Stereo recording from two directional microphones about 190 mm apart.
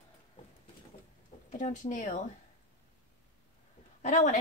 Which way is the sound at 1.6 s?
40° left (ahead or behind).